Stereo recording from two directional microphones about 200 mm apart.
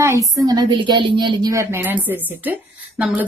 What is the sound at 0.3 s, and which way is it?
A woman's voice, 20° right (ahead or behind).